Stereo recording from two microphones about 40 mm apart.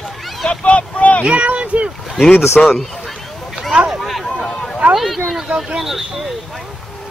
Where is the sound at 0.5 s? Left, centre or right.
Left.